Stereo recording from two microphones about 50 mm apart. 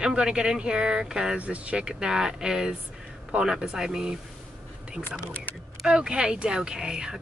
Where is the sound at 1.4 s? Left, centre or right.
Right.